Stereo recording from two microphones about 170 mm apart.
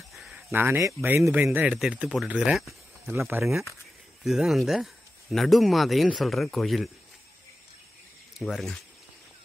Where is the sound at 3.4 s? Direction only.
10° right (ahead or behind).